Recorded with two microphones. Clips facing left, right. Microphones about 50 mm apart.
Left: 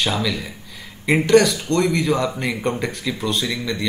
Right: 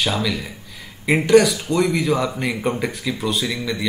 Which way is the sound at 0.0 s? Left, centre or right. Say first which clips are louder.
Even; centre.